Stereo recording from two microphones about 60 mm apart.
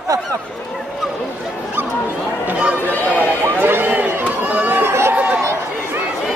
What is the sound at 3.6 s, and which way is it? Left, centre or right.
Run, right.